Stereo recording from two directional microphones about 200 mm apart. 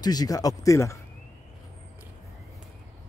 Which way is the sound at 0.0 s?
20° left (ahead or behind).